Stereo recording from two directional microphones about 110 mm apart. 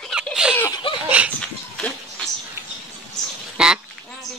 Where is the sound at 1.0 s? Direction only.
15° right (ahead or behind).